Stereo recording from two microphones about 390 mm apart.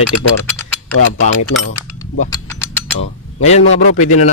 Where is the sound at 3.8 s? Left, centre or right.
Left.